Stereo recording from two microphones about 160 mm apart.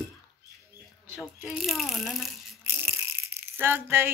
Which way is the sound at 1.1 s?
Centre (ahead or behind).